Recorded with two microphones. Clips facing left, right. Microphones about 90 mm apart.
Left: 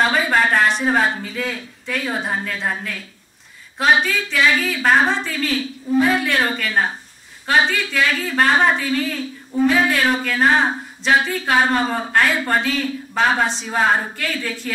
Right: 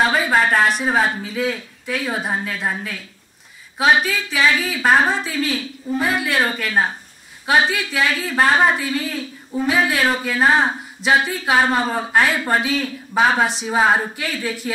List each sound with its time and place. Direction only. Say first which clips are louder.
0.0 s a woman's voice: even; 5° right (ahead or behind)